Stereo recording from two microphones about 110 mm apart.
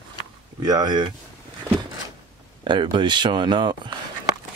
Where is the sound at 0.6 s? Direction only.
40° right (ahead or behind).